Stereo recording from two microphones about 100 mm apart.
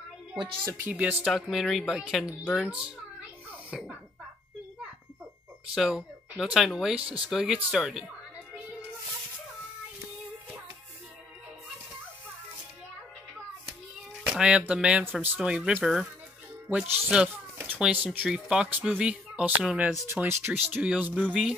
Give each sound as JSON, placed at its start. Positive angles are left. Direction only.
{"t": 0.7, "sound": "speech", "side_deg": -15}
{"t": 1.3, "sound": "speech", "side_deg": 0}
{"t": 3.7, "sound": "speech", "side_deg": -5}
{"t": 5.8, "sound": "speech", "side_deg": -5}
{"t": 14.2, "sound": "cat", "side_deg": -5}
{"t": 14.7, "sound": "speech", "side_deg": -10}
{"t": 16.6, "sound": "speech", "side_deg": -15}